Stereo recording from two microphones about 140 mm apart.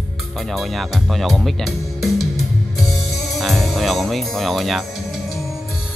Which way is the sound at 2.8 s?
Centre (ahead or behind).